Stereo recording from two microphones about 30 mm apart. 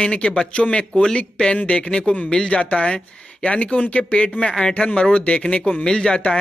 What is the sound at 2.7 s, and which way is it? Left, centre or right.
Speech, left.